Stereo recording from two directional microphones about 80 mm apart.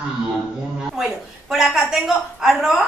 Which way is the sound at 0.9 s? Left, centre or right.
Centre.